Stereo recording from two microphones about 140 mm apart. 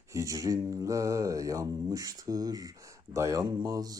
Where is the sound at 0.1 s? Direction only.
25° right (ahead or behind).